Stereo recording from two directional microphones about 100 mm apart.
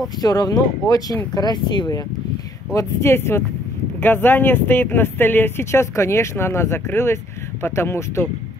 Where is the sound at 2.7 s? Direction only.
25° left (ahead or behind).